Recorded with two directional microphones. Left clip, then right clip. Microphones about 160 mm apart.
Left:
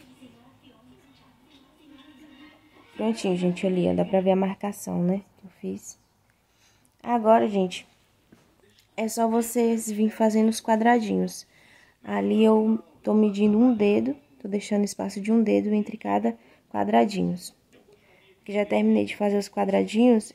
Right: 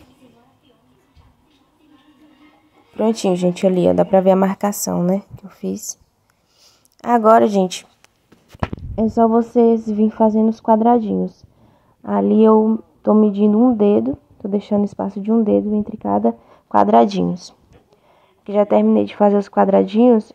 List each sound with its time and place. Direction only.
3.0 s speech: 40° right (ahead or behind)
7.0 s speech: 40° right (ahead or behind)
8.7 s speech: 25° right (ahead or behind)